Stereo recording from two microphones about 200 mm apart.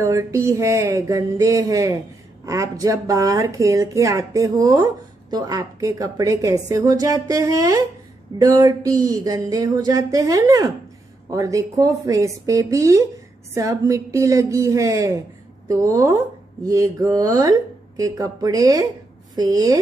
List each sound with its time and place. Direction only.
0.0 s a woman's voice: 15° right (ahead or behind)